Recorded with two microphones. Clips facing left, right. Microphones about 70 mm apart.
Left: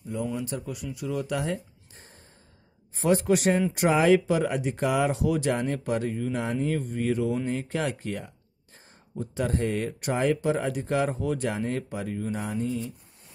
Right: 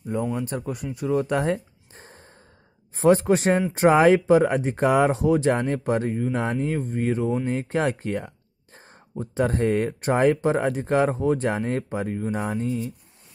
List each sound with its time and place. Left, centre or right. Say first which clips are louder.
0.1 s speech: right 4 dB; right
12.4 s speech: right 3 dB; right